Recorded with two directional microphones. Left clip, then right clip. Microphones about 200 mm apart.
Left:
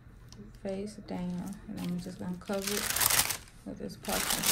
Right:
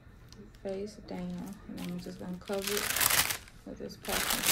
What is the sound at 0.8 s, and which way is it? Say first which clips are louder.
Music: right 1 dB; 40° left (ahead or behind).